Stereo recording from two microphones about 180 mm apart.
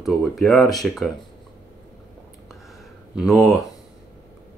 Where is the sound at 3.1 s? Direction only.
Centre (ahead or behind).